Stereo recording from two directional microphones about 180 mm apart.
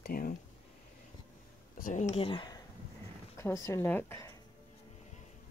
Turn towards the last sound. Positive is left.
turn(degrees=15)  # may be behind; listen again after turning